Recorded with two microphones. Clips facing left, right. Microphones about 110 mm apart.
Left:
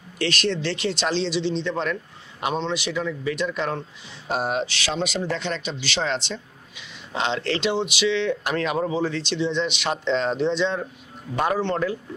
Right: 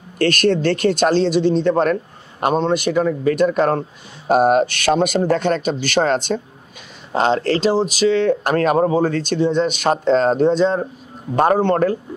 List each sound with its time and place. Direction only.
0.2 s speech: 50° right (ahead or behind)